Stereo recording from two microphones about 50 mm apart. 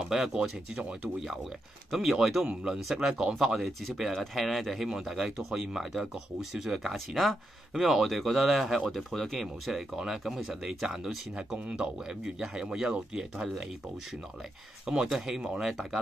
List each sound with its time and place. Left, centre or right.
0.0 s speech: centre
1.9 s speech: centre
2.4 s speech: centre
11.3 s speech: right
11.8 s speech: centre
14.9 s speech: centre
15.6 s speech: centre